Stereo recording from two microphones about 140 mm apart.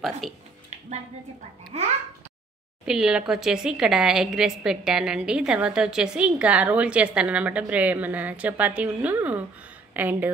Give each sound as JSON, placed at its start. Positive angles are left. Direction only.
{"t": 1.7, "sound": "a child's voice", "side_deg": -50}
{"t": 2.8, "sound": "a woman's voice", "side_deg": -5}